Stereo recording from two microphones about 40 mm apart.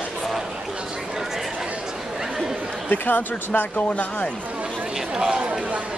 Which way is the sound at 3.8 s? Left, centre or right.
Left.